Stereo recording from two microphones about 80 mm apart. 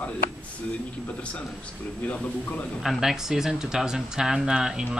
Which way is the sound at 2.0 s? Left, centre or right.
Left.